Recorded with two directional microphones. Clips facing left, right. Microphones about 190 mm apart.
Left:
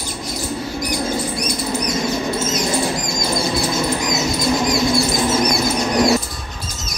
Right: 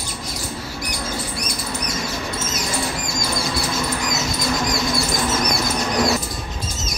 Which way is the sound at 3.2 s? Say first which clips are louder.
Left 4 dB; 25° left (ahead or behind).